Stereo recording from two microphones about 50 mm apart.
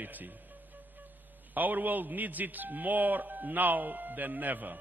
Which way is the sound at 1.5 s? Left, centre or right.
Right.